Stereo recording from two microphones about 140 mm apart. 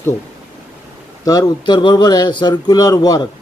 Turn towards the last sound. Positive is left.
turn(degrees=30)  # may be behind; listen again after turning